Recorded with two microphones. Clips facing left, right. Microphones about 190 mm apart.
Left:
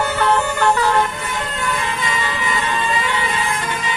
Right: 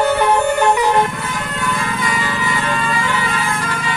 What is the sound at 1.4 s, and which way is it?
Vehicle, 25° left (ahead or behind).